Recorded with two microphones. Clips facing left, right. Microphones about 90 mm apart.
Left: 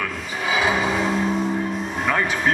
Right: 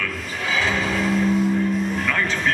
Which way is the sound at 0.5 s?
15° left (ahead or behind).